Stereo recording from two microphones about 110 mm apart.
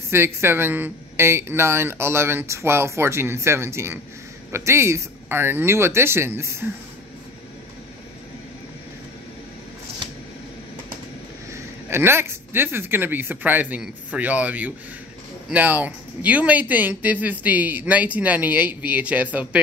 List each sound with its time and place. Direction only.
0.1 s speech: 20° right (ahead or behind)
11.5 s speech: 20° right (ahead or behind)